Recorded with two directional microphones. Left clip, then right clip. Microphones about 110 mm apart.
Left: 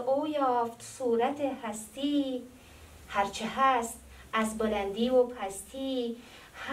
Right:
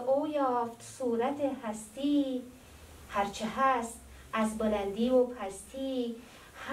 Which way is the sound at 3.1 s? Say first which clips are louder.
Left 2 dB; 15° left (ahead or behind).